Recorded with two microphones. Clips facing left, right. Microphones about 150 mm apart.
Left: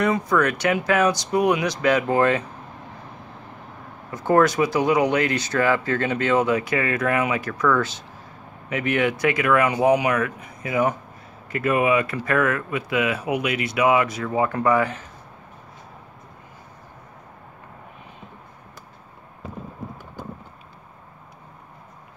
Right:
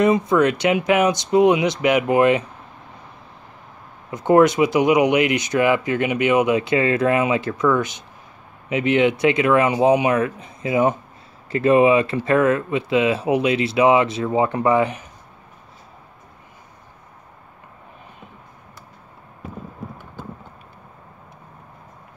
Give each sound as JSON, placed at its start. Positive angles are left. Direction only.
{"t": 0.0, "sound": "speech", "side_deg": -20}
{"t": 4.1, "sound": "speech", "side_deg": -20}